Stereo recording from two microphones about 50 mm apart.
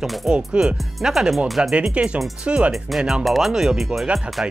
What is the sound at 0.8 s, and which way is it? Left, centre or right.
Speech, centre.